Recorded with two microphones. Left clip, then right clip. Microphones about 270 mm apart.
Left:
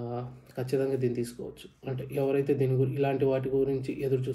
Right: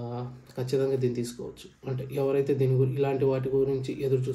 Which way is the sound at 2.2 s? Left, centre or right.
Right.